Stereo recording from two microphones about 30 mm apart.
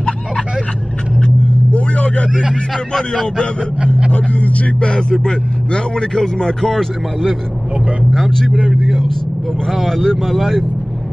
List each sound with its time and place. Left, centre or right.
1.7 s vehicle: left
2.5 s speech: centre
4.1 s speech: left
5.2 s speech: left
8.8 s speech: centre
9.7 s speech: centre